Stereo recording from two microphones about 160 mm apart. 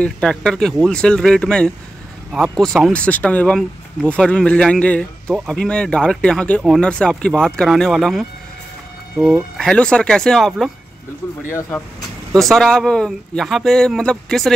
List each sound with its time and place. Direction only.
0.0 s speech: 5° left (ahead or behind)
9.6 s speech: 5° left (ahead or behind)
12.4 s speech: 5° left (ahead or behind)